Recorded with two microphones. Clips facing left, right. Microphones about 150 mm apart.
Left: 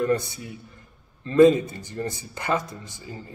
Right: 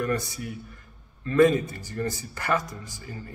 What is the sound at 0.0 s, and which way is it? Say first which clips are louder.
Speech: left 4 dB; 25° left (ahead or behind).